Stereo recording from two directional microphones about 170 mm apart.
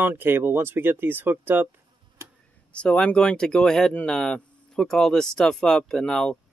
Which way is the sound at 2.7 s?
5° left (ahead or behind).